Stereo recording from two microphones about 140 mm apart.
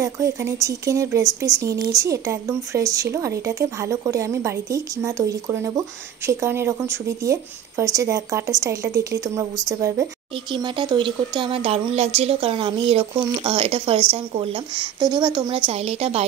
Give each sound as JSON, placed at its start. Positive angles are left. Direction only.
{"t": 0.0, "sound": "a woman's voice", "side_deg": -20}
{"t": 10.5, "sound": "speech", "side_deg": -35}